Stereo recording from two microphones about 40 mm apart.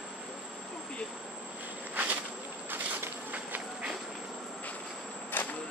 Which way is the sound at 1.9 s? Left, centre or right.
Right.